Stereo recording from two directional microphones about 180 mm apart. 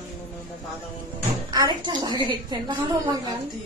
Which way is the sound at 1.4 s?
25° right (ahead or behind).